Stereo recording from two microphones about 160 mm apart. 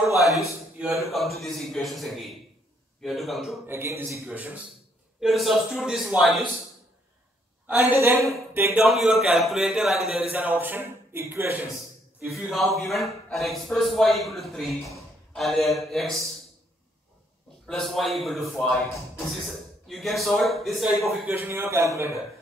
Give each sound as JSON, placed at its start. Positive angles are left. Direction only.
{"t": 0.2, "sound": "a sound", "side_deg": 20}
{"t": 0.7, "sound": "speech", "side_deg": -5}
{"t": 3.6, "sound": "speech", "side_deg": -15}
{"t": 7.6, "sound": "speech", "side_deg": -10}
{"t": 9.2, "sound": "speech", "side_deg": 0}
{"t": 12.3, "sound": "speech", "side_deg": 0}
{"t": 17.6, "sound": "speech", "side_deg": 0}
{"t": 21.3, "sound": "speech", "side_deg": -15}